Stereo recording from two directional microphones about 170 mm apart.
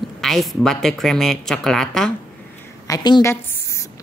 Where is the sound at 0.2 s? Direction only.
Centre (ahead or behind).